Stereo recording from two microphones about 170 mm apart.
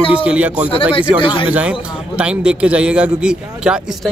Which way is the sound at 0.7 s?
30° left (ahead or behind).